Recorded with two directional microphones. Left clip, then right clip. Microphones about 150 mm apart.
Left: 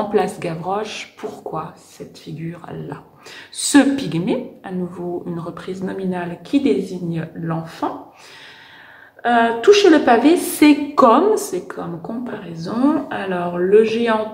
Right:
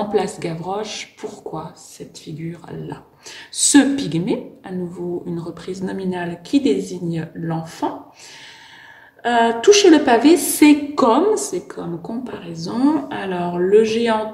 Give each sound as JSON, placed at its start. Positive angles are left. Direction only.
{"t": 0.0, "sound": "a woman's voice", "side_deg": -5}
{"t": 9.2, "sound": "a woman's voice", "side_deg": -20}